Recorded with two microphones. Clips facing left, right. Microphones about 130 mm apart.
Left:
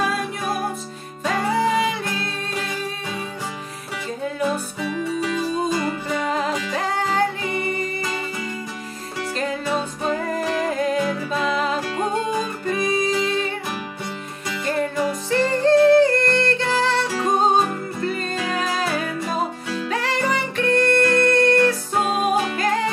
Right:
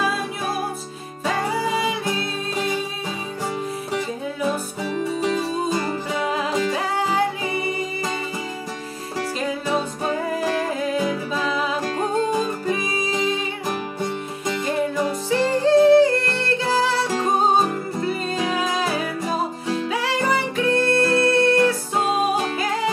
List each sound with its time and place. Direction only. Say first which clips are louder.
4.8 s music: right 1 dB; 35° right (ahead or behind)
6.0 s music: left 1 dB; 5° right (ahead or behind)
9.4 s music: even; 5° right (ahead or behind)
12.6 s music: left 3 dB; 10° right (ahead or behind)
15.2 s yodeling: left 1 dB; 10° right (ahead or behind)
18.0 s music: right 1 dB; 5° right (ahead or behind)